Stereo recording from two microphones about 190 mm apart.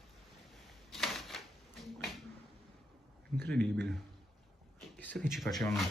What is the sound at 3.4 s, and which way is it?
Speech, 5° left (ahead or behind).